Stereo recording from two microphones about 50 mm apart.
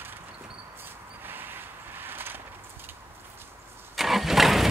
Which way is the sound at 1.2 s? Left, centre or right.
Right.